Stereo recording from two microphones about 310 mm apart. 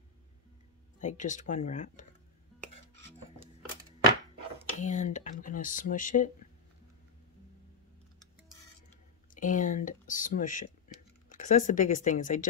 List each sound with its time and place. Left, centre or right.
0.9 s speech: left
4.7 s speech: left
9.3 s speech: left